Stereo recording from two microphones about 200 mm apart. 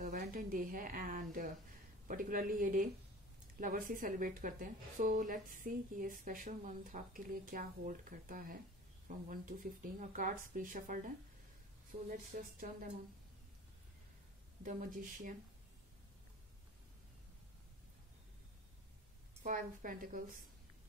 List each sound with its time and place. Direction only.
0.0 s a woman's voice: 45° right (ahead or behind)
12.3 s speech: 45° right (ahead or behind)
14.6 s speech: 40° right (ahead or behind)
19.4 s speech: 40° right (ahead or behind)